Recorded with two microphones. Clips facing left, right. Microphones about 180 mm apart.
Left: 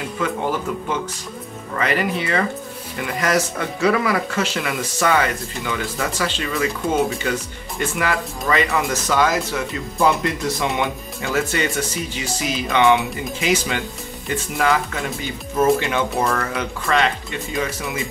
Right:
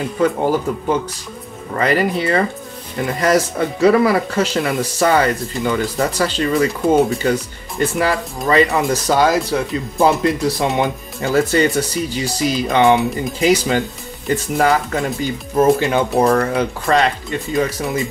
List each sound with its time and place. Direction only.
0.2 s speech: 35° right (ahead or behind)